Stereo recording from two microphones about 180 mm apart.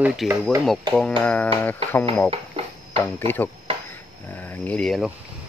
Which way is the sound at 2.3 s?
35° right (ahead or behind).